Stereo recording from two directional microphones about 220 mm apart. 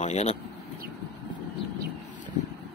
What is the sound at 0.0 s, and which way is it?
Speech, 30° left (ahead or behind).